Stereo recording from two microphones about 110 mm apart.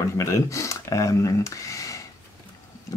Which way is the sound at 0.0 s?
30° left (ahead or behind).